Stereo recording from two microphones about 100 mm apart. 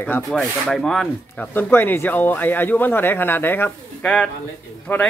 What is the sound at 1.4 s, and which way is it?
Speech, 20° left (ahead or behind).